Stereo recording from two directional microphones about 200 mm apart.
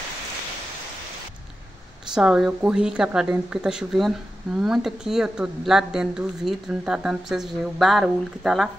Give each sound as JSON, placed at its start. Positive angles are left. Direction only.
{"t": 2.1, "sound": "speech", "side_deg": -5}